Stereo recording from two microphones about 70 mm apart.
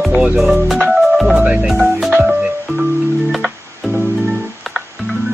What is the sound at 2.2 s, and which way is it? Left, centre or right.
Music, centre.